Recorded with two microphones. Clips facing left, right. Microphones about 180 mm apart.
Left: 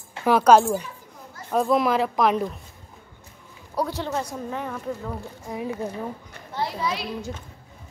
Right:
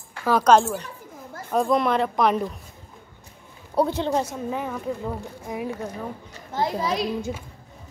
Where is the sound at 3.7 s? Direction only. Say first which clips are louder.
Right 5 dB; 20° right (ahead or behind).